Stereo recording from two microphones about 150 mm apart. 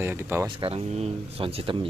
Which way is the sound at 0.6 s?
40° right (ahead or behind).